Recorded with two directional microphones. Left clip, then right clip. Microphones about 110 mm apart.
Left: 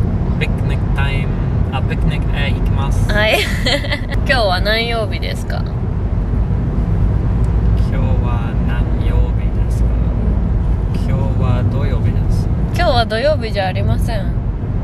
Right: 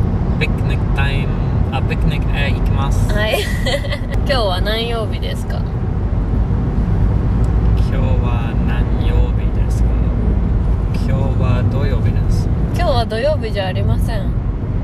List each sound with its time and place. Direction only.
3.1 s vehicle: 15° left (ahead or behind)
4.3 s speech: 15° left (ahead or behind)
12.7 s speech: 15° left (ahead or behind)